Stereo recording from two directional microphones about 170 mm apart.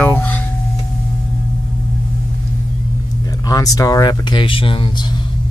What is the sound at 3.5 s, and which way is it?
Speech, 20° left (ahead or behind).